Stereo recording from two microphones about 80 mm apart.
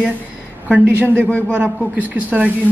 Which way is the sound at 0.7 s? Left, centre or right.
Right.